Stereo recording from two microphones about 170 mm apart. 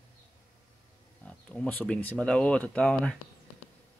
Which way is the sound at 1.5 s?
5° left (ahead or behind).